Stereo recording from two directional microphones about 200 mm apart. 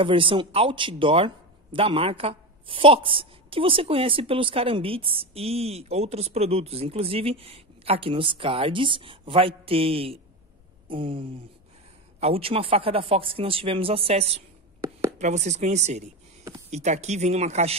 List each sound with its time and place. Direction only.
0.0 s speech: 25° right (ahead or behind)
14.8 s a sound: 15° right (ahead or behind)
15.1 s speech: 35° right (ahead or behind)